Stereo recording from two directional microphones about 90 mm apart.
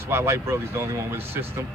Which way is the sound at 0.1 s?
30° right (ahead or behind).